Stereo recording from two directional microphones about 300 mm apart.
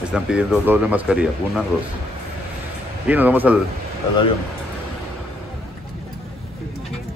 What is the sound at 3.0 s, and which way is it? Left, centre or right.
Speech, centre.